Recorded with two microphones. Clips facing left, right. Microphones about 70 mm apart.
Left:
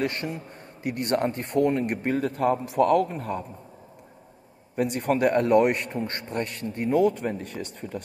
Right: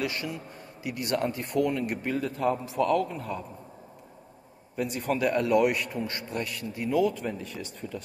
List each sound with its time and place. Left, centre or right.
0.0 s a man's voice: left
4.7 s a man's voice: left